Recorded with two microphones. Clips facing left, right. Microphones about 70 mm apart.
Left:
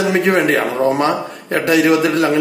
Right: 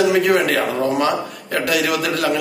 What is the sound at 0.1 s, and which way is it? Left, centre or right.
A man's voice, left.